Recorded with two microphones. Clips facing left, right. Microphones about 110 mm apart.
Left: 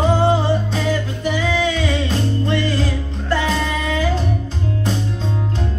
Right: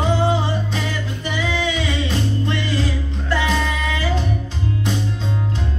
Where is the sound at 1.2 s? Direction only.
45° left (ahead or behind).